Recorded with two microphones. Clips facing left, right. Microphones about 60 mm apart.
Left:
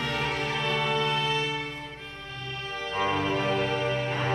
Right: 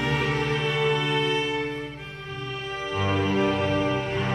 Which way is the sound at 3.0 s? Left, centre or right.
Centre.